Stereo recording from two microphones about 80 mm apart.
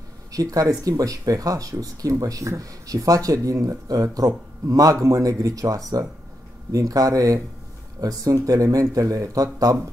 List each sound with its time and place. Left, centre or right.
0.3 s speech: right